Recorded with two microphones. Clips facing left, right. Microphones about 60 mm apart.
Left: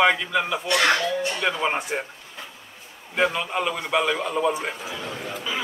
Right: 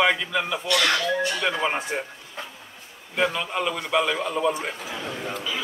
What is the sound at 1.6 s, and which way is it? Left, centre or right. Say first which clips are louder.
Speech: left 1 dB; centre.